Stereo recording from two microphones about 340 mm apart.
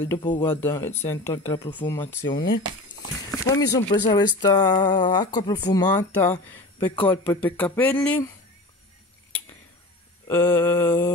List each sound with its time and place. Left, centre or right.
0.0 s speech: centre
10.2 s mantra: centre